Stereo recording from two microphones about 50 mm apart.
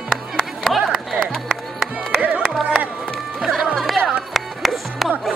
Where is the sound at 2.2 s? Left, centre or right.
Right.